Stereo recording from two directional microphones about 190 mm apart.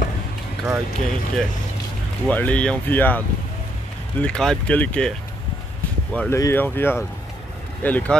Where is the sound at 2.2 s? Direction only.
10° left (ahead or behind).